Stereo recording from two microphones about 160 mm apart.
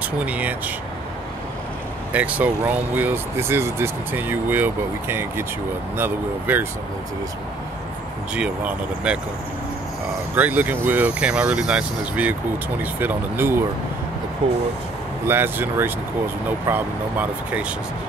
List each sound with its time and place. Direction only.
0.2 s speech: 10° right (ahead or behind)
2.1 s speech: 10° right (ahead or behind)
8.4 s speech: 5° right (ahead or behind)
10.3 s speech: 10° right (ahead or behind)
15.2 s speech: 15° right (ahead or behind)